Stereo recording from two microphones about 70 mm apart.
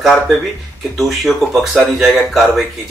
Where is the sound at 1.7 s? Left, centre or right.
Centre.